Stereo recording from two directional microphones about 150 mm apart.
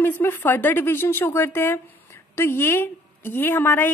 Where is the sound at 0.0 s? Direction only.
15° left (ahead or behind).